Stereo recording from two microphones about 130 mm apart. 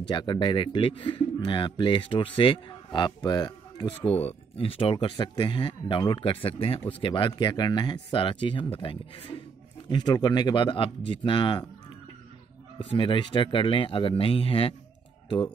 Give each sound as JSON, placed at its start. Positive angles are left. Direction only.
{"t": 0.1, "sound": "a man's voice", "side_deg": 35}
{"t": 4.1, "sound": "a man's voice", "side_deg": 50}
{"t": 9.8, "sound": "a man's voice", "side_deg": 35}
{"t": 12.7, "sound": "a man's voice", "side_deg": 40}